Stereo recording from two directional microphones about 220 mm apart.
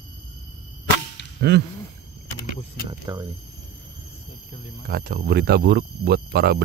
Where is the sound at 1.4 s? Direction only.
50° right (ahead or behind).